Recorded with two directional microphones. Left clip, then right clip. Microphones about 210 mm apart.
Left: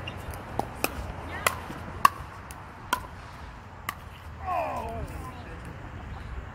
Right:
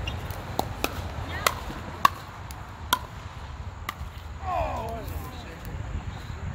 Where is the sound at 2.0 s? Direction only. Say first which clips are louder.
Even; 15° left (ahead or behind).